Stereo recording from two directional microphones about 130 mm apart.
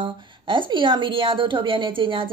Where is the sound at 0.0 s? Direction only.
40° right (ahead or behind).